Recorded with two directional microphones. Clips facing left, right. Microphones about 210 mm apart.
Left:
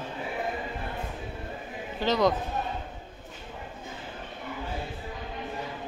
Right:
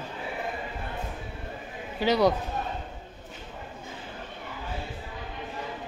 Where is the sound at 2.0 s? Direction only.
10° right (ahead or behind).